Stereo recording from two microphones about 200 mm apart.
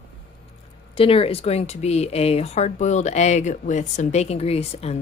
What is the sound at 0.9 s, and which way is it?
Speech, 30° left (ahead or behind).